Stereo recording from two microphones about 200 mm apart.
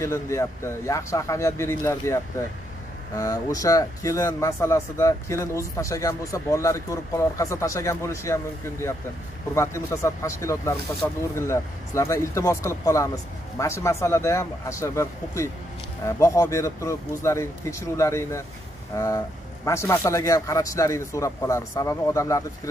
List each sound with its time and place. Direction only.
0.0 s speech: 15° left (ahead or behind)
9.6 s speech: 15° left (ahead or behind)